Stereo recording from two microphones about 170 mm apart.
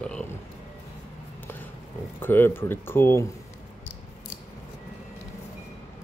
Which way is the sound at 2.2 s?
10° left (ahead or behind).